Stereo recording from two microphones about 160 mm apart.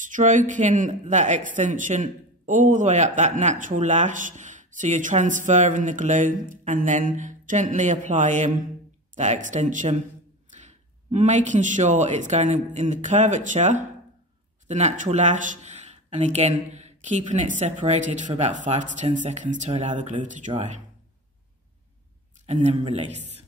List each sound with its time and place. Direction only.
0.0 s a sound: 50° right (ahead or behind)
0.5 s a man's voice: 50° right (ahead or behind)
22.5 s a man's voice: 45° right (ahead or behind)